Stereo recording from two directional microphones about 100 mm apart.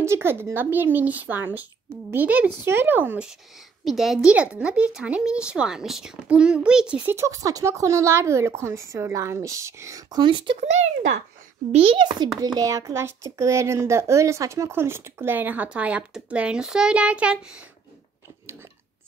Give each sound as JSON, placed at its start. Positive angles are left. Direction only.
{"t": 0.0, "sound": "a child's voice", "side_deg": -25}
{"t": 3.8, "sound": "speech", "side_deg": 0}
{"t": 7.1, "sound": "a child's voice", "side_deg": -30}
{"t": 10.1, "sound": "speech", "side_deg": -55}
{"t": 11.7, "sound": "a child's voice", "side_deg": -65}
{"t": 12.4, "sound": "a child's voice", "side_deg": -35}